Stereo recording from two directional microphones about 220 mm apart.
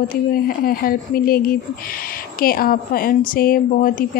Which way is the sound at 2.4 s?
40° left (ahead or behind).